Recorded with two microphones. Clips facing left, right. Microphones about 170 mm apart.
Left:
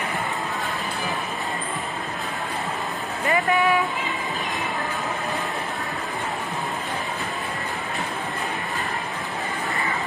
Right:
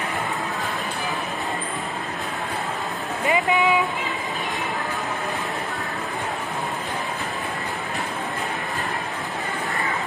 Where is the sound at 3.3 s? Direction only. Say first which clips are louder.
Even; 20° right (ahead or behind).